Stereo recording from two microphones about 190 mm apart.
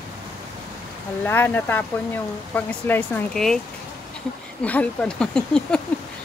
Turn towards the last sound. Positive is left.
turn(degrees=5)  # may be behind; listen again after turning